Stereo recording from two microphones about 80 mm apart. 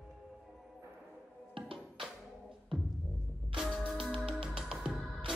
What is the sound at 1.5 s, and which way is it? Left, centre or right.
Music, right.